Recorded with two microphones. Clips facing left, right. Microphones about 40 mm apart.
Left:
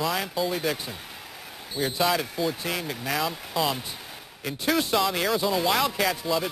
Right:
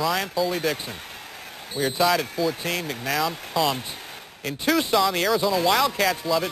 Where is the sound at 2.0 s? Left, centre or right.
Centre.